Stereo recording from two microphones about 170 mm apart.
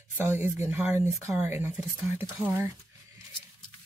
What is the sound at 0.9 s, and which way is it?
Speech, 40° left (ahead or behind).